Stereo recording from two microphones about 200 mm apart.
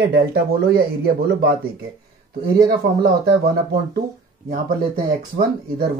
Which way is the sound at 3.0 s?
50° right (ahead or behind).